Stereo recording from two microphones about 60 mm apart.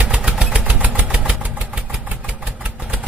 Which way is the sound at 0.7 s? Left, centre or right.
Right.